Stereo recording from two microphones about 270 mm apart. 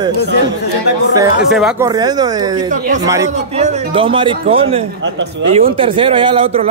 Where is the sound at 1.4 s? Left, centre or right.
Centre.